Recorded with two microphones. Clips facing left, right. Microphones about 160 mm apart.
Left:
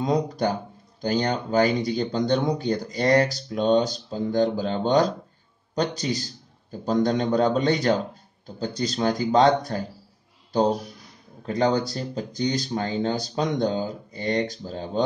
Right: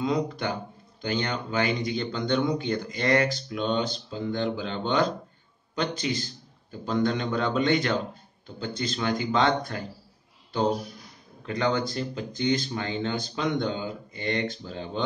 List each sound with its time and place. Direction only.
0.0 s speech: 40° left (ahead or behind)
11.4 s speech: 40° left (ahead or behind)